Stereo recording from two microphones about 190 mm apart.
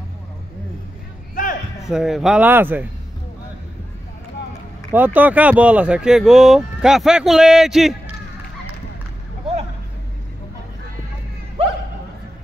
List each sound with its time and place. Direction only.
1.3 s a sound: 45° left (ahead or behind)
1.9 s speech: centre (ahead or behind)
4.9 s speech: 10° right (ahead or behind)